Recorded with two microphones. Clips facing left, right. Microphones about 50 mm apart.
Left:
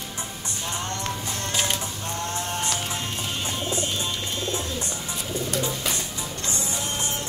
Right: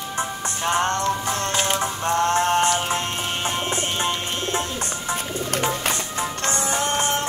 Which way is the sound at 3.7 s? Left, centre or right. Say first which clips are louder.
Right 4 dB; right.